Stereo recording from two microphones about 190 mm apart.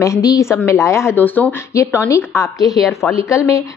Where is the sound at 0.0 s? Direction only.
15° left (ahead or behind).